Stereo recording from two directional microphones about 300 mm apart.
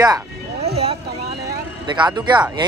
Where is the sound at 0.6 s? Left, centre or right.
Centre.